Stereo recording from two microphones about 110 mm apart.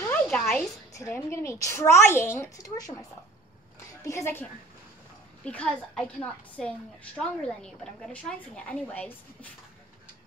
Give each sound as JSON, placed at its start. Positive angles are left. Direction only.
{"t": 0.0, "sound": "a sound", "side_deg": 20}
{"t": 0.9, "sound": "a woman's voice", "side_deg": 25}
{"t": 5.4, "sound": "a woman's voice", "side_deg": 10}